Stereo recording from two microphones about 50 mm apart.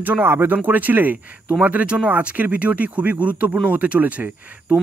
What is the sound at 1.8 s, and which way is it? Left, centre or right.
Speech, right.